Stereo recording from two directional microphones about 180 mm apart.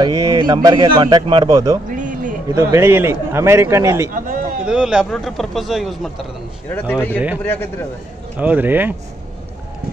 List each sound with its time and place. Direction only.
0.0 s speech: 20° right (ahead or behind)
1.9 s a sound: 45° right (ahead or behind)
2.5 s a man's voice: 20° right (ahead or behind)
4.6 s a man's voice: 5° right (ahead or behind)
6.7 s speech: 10° left (ahead or behind)
8.4 s a man's voice: 10° right (ahead or behind)